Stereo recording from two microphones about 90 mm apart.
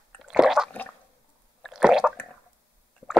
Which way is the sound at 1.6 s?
5° right (ahead or behind).